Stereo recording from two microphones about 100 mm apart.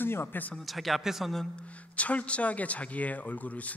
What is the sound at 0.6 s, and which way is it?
Speech, centre (ahead or behind).